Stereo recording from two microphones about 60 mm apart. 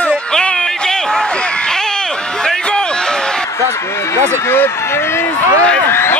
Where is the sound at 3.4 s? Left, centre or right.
Left.